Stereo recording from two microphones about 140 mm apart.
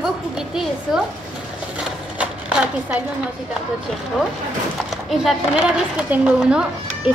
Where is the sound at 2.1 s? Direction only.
10° right (ahead or behind).